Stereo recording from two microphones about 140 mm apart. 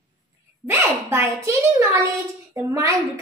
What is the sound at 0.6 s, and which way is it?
A child's voice, 20° right (ahead or behind).